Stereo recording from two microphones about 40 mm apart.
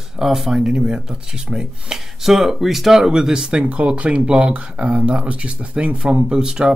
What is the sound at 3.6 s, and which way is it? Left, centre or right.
Speech, right.